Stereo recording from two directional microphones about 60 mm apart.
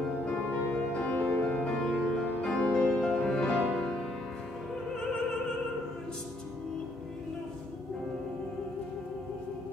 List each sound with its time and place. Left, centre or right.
0.2 s music: left